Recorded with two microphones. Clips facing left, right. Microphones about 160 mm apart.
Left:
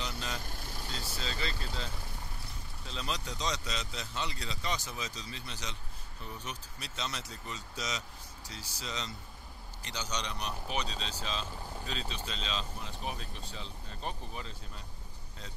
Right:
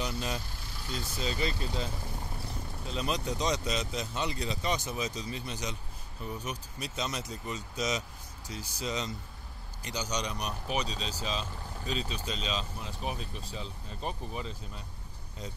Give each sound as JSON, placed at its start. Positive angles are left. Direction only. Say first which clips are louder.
{"t": 0.0, "sound": "speech", "louder": "right 5 dB", "side_deg": -15}
{"t": 2.9, "sound": "speech", "louder": "right 6 dB", "side_deg": -15}